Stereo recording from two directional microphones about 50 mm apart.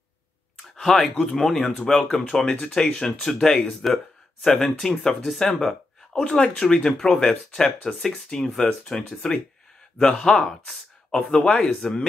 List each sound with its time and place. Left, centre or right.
0.7 s speech: centre